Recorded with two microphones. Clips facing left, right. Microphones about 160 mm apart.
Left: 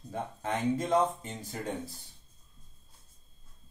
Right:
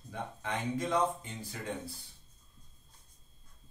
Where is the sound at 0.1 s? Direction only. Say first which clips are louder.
Left 4 dB; 45° left (ahead or behind).